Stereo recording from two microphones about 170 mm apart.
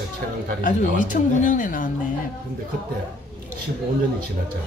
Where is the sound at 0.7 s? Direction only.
50° left (ahead or behind).